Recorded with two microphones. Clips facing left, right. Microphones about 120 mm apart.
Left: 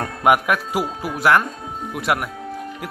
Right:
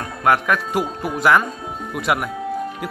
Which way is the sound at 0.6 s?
5° left (ahead or behind).